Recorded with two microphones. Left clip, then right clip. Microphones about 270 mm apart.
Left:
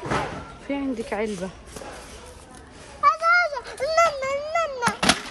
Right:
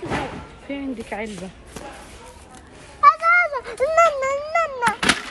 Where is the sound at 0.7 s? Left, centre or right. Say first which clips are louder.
Left 2 dB; centre.